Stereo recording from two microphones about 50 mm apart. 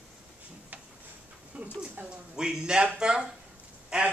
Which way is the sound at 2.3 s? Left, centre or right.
Centre.